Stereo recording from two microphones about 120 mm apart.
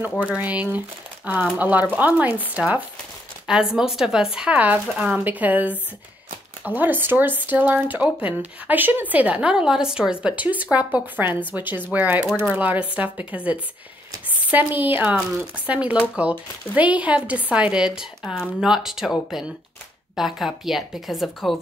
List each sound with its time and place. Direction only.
0.2 s a woman's voice: 10° right (ahead or behind)